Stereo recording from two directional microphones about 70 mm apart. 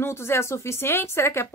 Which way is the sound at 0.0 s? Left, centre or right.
Left.